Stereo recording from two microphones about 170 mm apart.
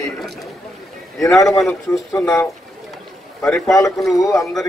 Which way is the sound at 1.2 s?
20° left (ahead or behind).